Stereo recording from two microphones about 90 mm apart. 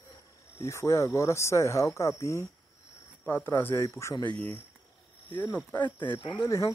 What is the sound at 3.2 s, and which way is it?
Speech, 25° left (ahead or behind).